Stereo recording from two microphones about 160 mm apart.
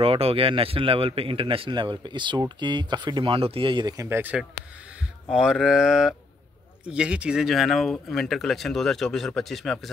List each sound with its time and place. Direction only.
0.0 s speech: 35° right (ahead or behind); by 9.8 s centre (ahead or behind)